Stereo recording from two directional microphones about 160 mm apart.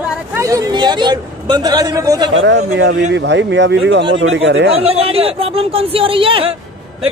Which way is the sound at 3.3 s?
90° right.